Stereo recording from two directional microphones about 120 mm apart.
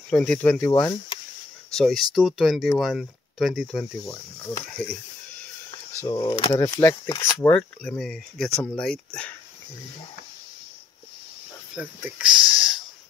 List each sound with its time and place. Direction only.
0.2 s speech: 15° left (ahead or behind)
1.7 s speech: 5° left (ahead or behind)
4.4 s speech: 20° left (ahead or behind)
6.0 s speech: 40° left (ahead or behind)
6.8 s speech: 20° left (ahead or behind)
7.8 s speech: 5° left (ahead or behind)
11.7 s speech: 10° right (ahead or behind)